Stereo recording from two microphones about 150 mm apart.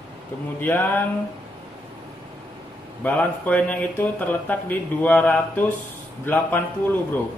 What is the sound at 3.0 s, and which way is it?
Speech, 10° left (ahead or behind).